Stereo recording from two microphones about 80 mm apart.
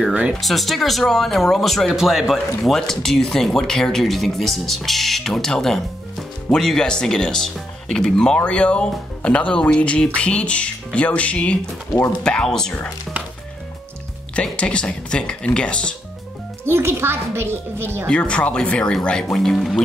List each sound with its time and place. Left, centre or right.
0.4 s speech: centre
14.3 s speech: centre
16.6 s a child's voice: right
18.0 s speech: centre